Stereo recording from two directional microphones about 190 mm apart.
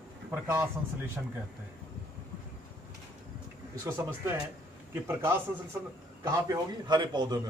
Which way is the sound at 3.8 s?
10° right (ahead or behind).